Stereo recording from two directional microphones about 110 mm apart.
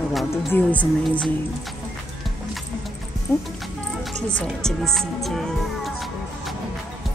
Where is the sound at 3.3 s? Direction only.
20° left (ahead or behind).